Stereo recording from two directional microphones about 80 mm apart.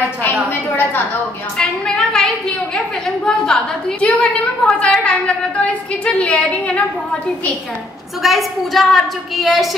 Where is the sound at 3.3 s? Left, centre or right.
Centre.